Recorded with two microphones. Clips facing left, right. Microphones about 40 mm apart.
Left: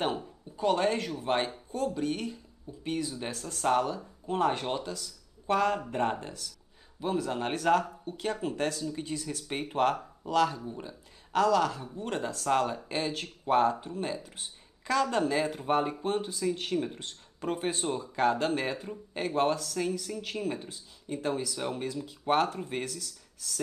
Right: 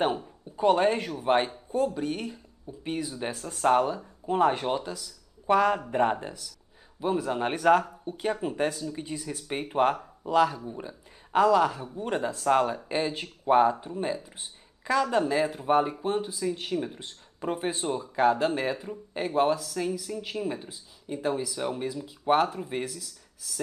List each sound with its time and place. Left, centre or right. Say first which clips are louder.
0.0 s speech: right 4 dB; centre
7.8 s speech: right 3 dB; centre
11.3 s speech: right 4 dB; centre